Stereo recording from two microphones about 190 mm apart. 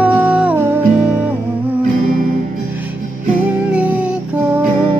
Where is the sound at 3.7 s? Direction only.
5° right (ahead or behind).